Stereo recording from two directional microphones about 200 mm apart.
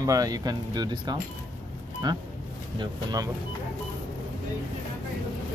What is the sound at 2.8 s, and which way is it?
Speech, 20° right (ahead or behind).